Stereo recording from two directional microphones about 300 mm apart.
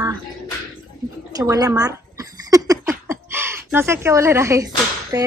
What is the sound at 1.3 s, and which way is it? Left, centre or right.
Gargling, centre.